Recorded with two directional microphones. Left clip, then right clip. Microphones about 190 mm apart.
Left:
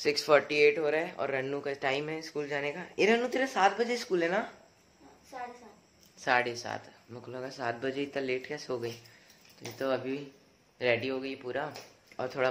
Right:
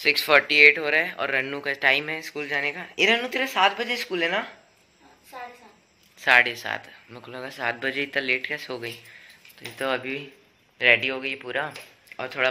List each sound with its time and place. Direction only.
0.2 s speech: 5° left (ahead or behind)
3.3 s speech: 15° left (ahead or behind)
5.3 s a sound: centre (ahead or behind)
6.2 s speech: 5° left (ahead or behind)
12.2 s speech: 20° left (ahead or behind)